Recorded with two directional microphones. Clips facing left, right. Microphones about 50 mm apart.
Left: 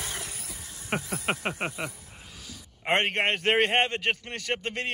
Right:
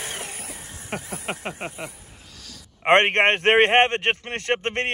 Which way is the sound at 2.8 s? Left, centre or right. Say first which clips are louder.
Right 8 dB; right.